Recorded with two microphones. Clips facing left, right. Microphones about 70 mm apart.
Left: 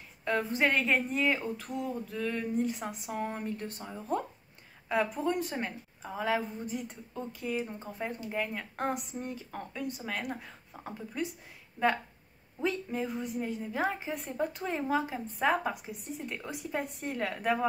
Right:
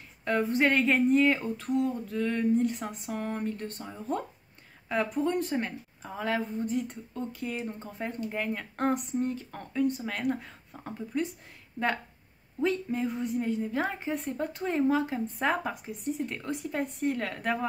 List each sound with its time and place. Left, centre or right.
0.2 s a woman's voice: centre
12.5 s a woman's voice: centre